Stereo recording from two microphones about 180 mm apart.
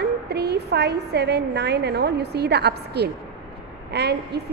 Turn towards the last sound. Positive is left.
turn(degrees=-65)  # may be behind; listen again after turning